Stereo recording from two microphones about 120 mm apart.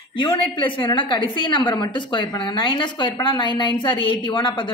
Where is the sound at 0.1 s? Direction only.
45° left (ahead or behind).